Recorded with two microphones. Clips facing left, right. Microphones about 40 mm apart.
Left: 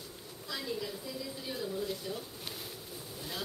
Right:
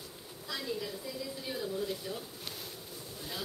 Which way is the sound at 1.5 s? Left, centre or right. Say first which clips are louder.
Right 1 dB; centre.